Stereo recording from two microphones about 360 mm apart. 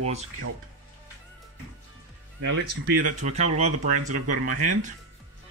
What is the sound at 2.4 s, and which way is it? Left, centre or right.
Speech, right.